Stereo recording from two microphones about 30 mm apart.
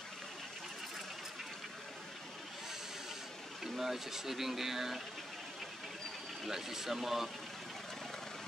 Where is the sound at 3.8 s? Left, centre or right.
Centre.